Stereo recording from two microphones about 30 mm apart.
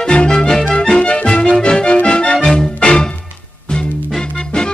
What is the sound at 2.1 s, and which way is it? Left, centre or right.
Music, left.